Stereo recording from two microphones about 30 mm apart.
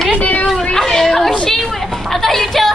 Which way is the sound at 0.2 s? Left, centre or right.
Left.